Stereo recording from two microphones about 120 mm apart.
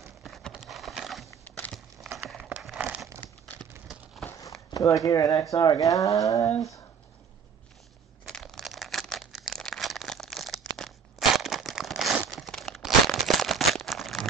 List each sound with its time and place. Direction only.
0.0 s horse: centre (ahead or behind)
1.5 s crumpling: 5° left (ahead or behind)
3.8 s a sound: centre (ahead or behind)
4.7 s speech: 30° left (ahead or behind)
8.3 s a sound: centre (ahead or behind)
10.8 s crumpling: centre (ahead or behind)